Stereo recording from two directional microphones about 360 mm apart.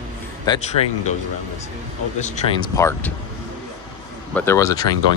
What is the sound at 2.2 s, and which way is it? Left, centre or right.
Speech, centre.